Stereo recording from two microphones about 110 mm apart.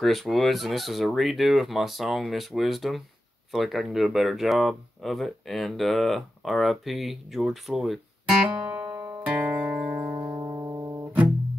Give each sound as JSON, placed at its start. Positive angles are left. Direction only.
{"t": 0.0, "sound": "speech", "side_deg": 0}
{"t": 8.6, "sound": "music", "side_deg": -15}
{"t": 10.1, "sound": "music", "side_deg": -30}